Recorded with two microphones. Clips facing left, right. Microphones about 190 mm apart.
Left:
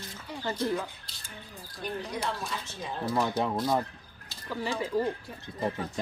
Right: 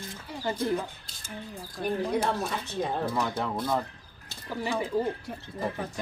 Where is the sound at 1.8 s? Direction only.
50° right (ahead or behind).